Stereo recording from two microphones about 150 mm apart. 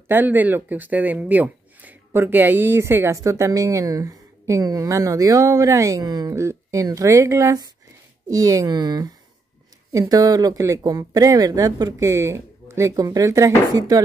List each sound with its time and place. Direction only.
0.1 s speech: 10° right (ahead or behind)